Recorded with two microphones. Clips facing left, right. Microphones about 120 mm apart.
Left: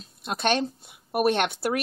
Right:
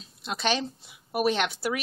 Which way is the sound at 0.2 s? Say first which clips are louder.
Left 3 dB; 55° left (ahead or behind).